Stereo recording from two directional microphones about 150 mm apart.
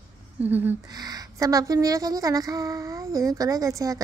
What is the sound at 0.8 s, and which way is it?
Speech, 25° right (ahead or behind).